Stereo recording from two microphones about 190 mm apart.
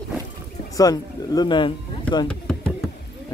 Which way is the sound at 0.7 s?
20° left (ahead or behind).